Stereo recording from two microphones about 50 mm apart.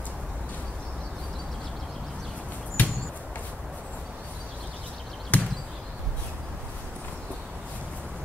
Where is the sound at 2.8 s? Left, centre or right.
Left.